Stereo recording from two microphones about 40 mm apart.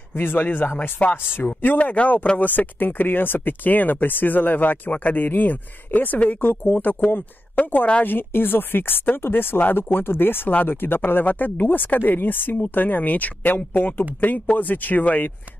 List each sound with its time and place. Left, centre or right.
0.2 s speech: left
0.7 s a man's voice: left
1.1 s speech: left
1.8 s a man's voice: left
6.4 s speech: left
7.6 s a man's voice: left
8.0 s speech: left